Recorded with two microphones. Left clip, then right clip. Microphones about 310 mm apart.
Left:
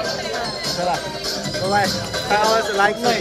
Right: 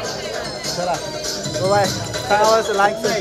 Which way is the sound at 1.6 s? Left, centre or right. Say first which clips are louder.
Right 2 dB; centre.